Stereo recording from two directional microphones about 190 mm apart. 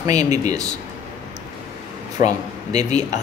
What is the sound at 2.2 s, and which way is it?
Speech, 45° left (ahead or behind).